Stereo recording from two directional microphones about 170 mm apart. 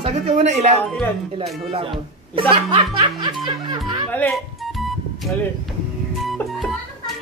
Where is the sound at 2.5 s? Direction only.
30° right (ahead or behind).